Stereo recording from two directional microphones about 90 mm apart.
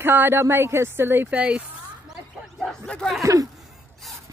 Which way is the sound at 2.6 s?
10° left (ahead or behind).